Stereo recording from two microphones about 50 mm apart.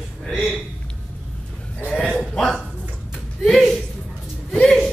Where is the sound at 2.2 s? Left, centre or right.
Centre.